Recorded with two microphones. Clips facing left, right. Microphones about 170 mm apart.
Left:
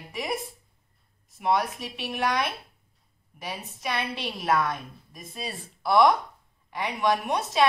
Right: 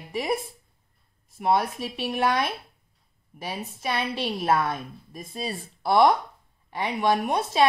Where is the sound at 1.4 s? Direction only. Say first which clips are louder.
Right 2 dB; 35° right (ahead or behind).